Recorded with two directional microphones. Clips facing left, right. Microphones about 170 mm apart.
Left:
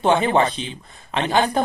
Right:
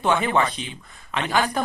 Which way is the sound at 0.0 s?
30° left (ahead or behind).